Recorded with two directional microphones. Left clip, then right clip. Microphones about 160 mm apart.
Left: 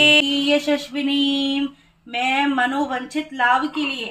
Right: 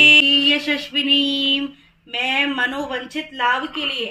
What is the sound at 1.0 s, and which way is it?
Speech, 75° left (ahead or behind).